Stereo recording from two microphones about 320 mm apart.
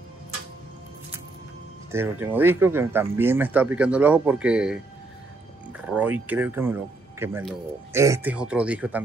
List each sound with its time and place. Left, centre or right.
1.9 s speech: centre